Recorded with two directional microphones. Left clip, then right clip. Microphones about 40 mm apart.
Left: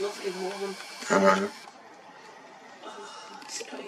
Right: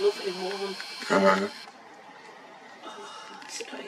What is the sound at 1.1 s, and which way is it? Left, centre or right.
Speech, centre.